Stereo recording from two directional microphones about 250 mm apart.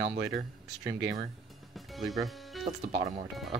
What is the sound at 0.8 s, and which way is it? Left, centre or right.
Speech, centre.